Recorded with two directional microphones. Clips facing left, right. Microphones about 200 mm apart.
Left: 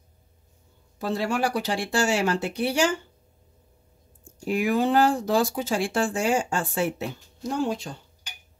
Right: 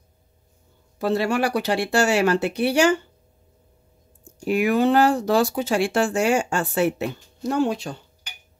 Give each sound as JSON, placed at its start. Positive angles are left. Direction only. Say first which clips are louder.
{"t": 0.9, "sound": "speech", "louder": "right 5 dB", "side_deg": -70}
{"t": 4.2, "sound": "speech", "louder": "right 4 dB", "side_deg": -70}